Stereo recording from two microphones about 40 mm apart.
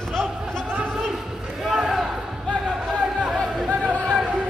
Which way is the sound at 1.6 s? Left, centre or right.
Centre.